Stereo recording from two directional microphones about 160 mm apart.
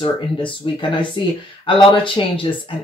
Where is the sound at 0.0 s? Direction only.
30° left (ahead or behind).